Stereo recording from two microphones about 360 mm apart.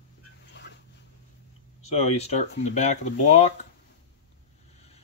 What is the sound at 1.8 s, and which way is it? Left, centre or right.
Speech, centre.